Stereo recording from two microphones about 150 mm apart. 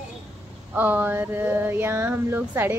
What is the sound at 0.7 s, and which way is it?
A woman's voice, 10° right (ahead or behind).